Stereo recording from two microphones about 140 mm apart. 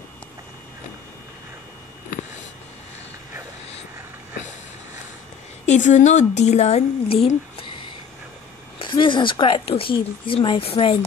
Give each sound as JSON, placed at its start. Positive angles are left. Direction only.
{"t": 5.7, "sound": "a woman's voice", "side_deg": 60}
{"t": 8.7, "sound": "a woman's voice", "side_deg": 35}